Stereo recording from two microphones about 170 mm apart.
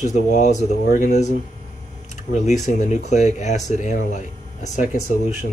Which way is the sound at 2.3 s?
45° left (ahead or behind).